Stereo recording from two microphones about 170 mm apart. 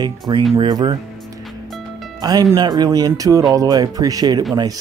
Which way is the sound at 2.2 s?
20° right (ahead or behind).